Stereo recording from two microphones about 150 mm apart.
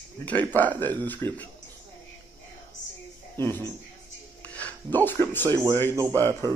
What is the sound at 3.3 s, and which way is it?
Speech, 15° left (ahead or behind).